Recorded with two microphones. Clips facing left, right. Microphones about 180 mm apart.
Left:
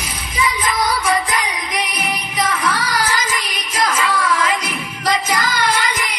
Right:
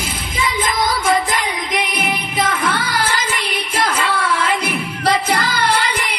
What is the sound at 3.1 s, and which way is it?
Music, 60° right (ahead or behind).